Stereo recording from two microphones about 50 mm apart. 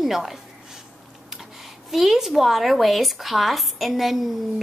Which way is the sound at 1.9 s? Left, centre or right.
Centre.